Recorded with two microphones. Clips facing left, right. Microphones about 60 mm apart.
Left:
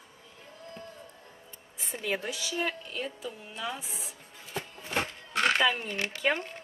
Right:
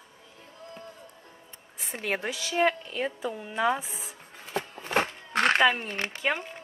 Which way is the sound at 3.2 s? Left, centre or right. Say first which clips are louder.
Right 9 dB; right.